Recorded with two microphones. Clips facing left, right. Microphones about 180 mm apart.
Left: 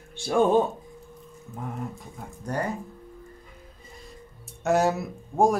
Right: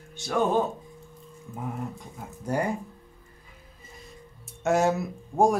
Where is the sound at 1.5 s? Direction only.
5° right (ahead or behind).